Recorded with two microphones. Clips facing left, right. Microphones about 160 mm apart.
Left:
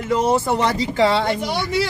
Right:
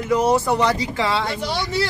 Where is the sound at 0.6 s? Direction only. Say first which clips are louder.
Left 3 dB; 30° left (ahead or behind).